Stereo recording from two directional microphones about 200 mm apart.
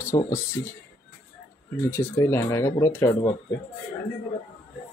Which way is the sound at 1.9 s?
15° left (ahead or behind).